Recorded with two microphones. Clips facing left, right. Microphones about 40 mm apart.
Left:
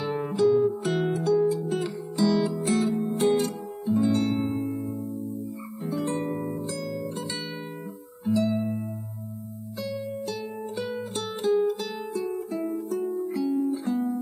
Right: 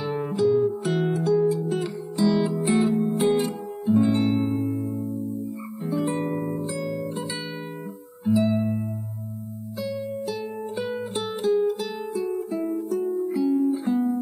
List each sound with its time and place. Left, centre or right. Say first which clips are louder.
0.0 s music: even; centre
1.5 s music: right 2 dB; right
3.2 s music: left 1 dB; centre
3.8 s guitar: right 4 dB; right
4.1 s music: right 2 dB; centre
4.4 s music: right 3 dB; centre
5.9 s music: right 3 dB; centre
8.3 s music: right 3 dB; right
9.8 s music: right 3 dB; centre
11.3 s music: right 1 dB; centre
13.7 s music: right 4 dB; right